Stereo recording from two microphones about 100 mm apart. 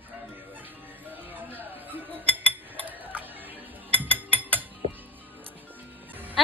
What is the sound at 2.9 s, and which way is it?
Mechanisms, 20° right (ahead or behind).